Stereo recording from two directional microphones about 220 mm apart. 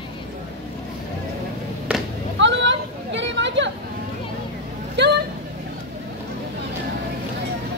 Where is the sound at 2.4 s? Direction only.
55° right (ahead or behind).